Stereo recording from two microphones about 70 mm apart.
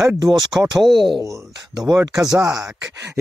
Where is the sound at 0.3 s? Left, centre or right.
Centre.